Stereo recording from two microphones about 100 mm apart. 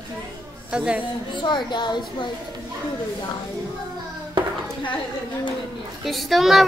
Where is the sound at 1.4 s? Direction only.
50° left (ahead or behind).